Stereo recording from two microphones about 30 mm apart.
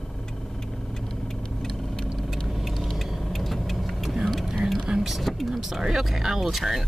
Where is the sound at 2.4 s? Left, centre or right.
Centre.